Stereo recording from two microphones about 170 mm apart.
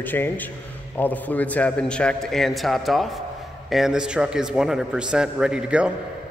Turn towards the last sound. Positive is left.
turn(degrees=-5)  # may be behind; listen again after turning